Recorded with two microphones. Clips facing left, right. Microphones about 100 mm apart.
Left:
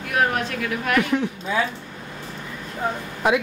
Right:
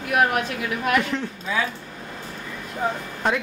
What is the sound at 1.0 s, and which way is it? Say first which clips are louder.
Speech: left 4 dB; 10° left (ahead or behind).